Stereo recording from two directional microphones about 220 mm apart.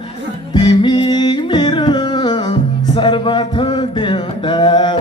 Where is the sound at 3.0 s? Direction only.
20° left (ahead or behind).